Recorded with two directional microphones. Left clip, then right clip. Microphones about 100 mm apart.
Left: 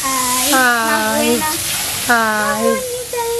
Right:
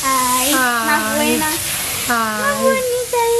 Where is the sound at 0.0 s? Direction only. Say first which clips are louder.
Right 2 dB; 15° left (ahead or behind).